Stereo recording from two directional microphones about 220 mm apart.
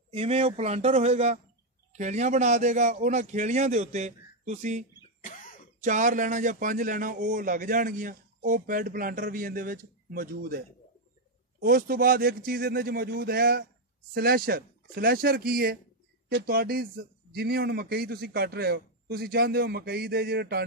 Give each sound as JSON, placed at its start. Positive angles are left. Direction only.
{"t": 0.1, "sound": "a man's voice", "side_deg": -25}
{"t": 5.2, "sound": "cough", "side_deg": 35}
{"t": 5.8, "sound": "a man's voice", "side_deg": -35}
{"t": 11.6, "sound": "a man's voice", "side_deg": -40}